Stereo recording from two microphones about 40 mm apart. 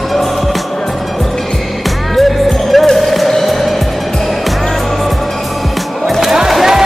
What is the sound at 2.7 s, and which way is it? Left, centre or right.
Music, centre.